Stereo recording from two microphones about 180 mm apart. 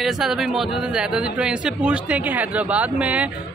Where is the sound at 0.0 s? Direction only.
Centre (ahead or behind).